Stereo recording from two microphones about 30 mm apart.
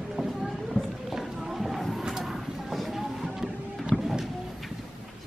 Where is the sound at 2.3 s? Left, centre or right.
Centre.